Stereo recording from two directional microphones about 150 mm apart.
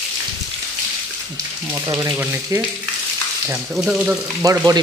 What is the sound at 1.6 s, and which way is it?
Speech, 20° right (ahead or behind).